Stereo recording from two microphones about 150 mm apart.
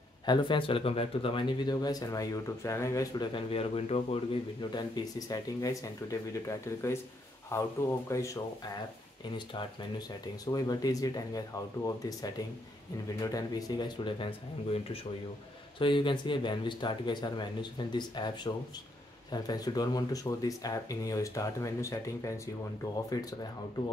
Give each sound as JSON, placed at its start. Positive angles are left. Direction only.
{"t": 0.2, "sound": "speech", "side_deg": 30}
{"t": 10.4, "sound": "speech", "side_deg": 25}